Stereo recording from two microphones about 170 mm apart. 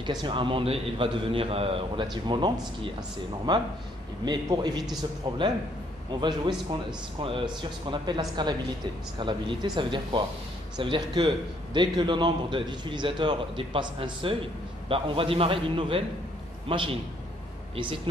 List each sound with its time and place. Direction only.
0.0 s a man's voice: 25° right (ahead or behind)
6.2 s a man's voice: 25° right (ahead or behind)